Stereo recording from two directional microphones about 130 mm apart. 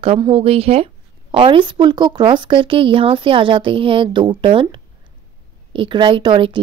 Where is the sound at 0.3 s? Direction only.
50° right (ahead or behind).